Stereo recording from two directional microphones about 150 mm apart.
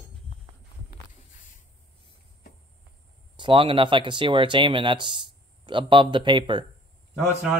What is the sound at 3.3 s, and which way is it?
Speech, 35° right (ahead or behind).